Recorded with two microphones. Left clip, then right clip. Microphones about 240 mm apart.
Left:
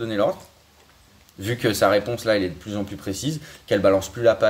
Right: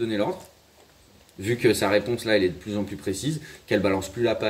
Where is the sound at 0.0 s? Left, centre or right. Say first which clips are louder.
Left 4 dB; left.